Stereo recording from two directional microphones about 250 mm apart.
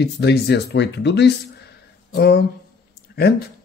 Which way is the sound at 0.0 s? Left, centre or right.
Left.